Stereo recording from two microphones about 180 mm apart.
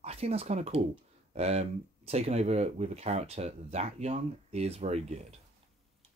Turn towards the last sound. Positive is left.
turn(degrees=-35)  # may be behind; listen again after turning